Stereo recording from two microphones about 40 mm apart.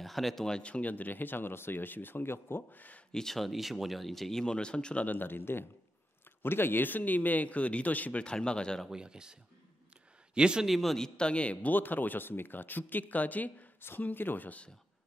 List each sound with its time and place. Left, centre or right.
0.0 s speech: centre
0.5 s speech: left
2.7 s speech: left
3.1 s speech: centre
3.3 s speech: centre; by 5.0 s left
5.0 s speech: left
8.2 s speech: left
8.9 s speech: centre
10.7 s speech: centre
11.1 s a man's voice: left
11.7 s speech: left
13.7 s speech: left
14.0 s speech: left